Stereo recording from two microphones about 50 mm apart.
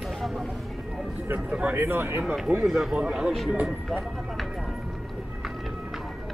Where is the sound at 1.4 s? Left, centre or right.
Right.